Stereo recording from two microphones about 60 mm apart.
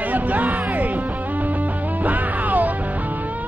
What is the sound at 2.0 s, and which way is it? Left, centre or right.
Music, right.